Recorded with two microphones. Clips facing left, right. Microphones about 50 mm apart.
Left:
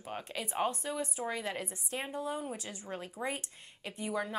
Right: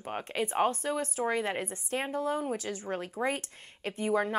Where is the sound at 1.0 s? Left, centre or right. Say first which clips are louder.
Right 5 dB; right.